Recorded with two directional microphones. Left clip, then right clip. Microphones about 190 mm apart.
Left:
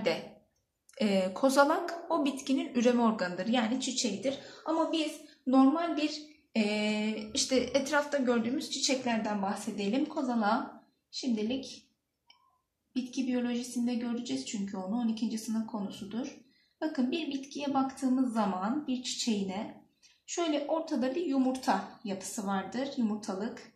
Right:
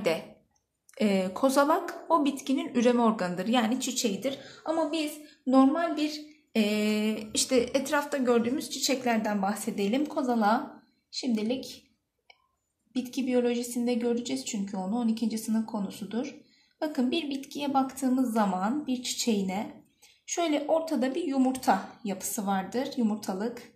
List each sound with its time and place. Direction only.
0.9 s speech: 30° right (ahead or behind); by 5.0 s 55° right (ahead or behind)
6.0 s speech: 50° right (ahead or behind)
12.9 s speech: 50° right (ahead or behind)